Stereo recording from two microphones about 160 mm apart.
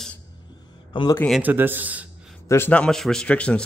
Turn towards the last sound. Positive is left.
turn(degrees=5)  # may be behind; listen again after turning